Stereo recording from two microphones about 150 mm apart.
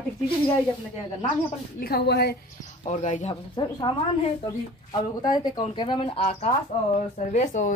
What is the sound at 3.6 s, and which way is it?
Speech, 30° left (ahead or behind).